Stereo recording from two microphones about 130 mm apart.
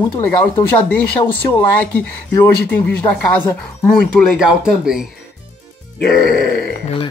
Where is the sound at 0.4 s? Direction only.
15° left (ahead or behind).